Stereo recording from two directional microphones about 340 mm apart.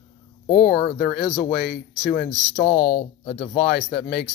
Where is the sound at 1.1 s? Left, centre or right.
Left.